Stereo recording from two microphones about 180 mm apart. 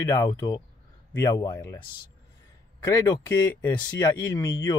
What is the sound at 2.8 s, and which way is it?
Speech, 15° left (ahead or behind).